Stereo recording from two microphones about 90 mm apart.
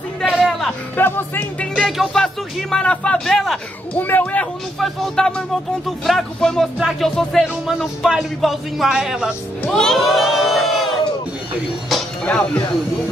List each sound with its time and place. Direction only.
0.2 s music: 5° right (ahead or behind)
0.9 s speech: 20° left (ahead or behind)
1.9 s a man's voice: centre (ahead or behind)
3.9 s speech: 20° left (ahead or behind)
4.7 s a man's voice: centre (ahead or behind)
9.7 s crowd: 5° left (ahead or behind)
12.3 s speech: 10° left (ahead or behind)